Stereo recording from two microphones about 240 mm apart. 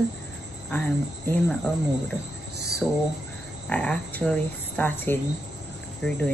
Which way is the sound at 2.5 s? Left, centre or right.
Right.